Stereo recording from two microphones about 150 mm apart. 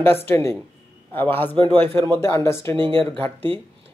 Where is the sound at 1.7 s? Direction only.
15° left (ahead or behind).